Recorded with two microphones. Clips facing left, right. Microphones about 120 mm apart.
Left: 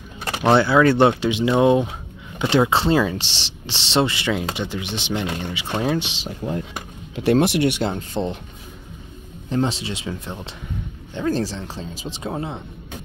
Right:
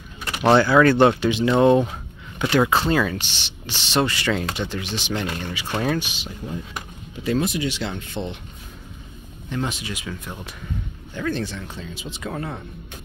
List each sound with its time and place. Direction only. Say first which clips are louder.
0.5 s speech: even; 15° left (ahead or behind)
2.4 s speech: left 1 dB; 25° left (ahead or behind)
7.2 s speech: left 6 dB; 75° left (ahead or behind)
7.9 s speech: left 5 dB; 35° left (ahead or behind)
9.5 s speech: left 5 dB; 30° left (ahead or behind)